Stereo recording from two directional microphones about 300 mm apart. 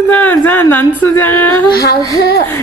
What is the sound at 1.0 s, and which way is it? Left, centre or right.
Female singing, centre.